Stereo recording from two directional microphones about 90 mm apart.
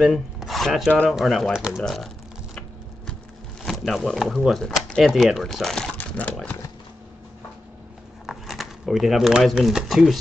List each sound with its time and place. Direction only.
0.0 s speech: centre (ahead or behind)
1.8 s speech: centre (ahead or behind)
3.6 s speech: centre (ahead or behind)
5.9 s a sound: 20° left (ahead or behind)
8.3 s speech: 5° right (ahead or behind)